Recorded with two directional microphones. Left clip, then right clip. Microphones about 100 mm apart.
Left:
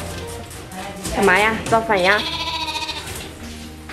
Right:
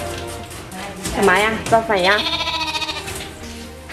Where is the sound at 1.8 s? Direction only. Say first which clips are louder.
Even; 15° left (ahead or behind).